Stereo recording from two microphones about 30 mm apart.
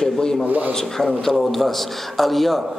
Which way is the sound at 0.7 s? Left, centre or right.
Centre.